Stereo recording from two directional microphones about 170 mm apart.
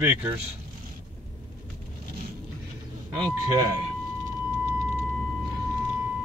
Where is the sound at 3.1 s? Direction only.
25° right (ahead or behind).